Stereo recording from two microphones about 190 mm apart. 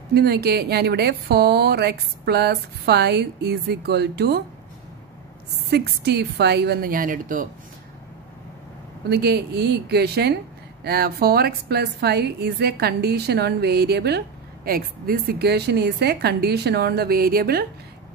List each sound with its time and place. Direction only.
0.1 s a woman's voice: 60° right (ahead or behind)
5.7 s a woman's voice: 60° right (ahead or behind)
9.1 s a woman's voice: 60° right (ahead or behind)